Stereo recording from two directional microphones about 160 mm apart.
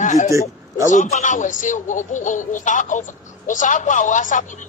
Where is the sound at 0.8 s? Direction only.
50° left (ahead or behind).